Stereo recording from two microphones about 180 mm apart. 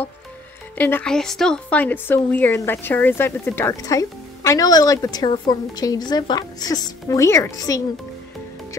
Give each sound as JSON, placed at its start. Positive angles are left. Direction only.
{"t": 0.7, "sound": "a woman's voice", "side_deg": 10}